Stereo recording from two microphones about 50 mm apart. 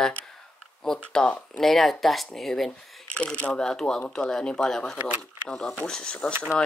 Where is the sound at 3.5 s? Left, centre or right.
Centre.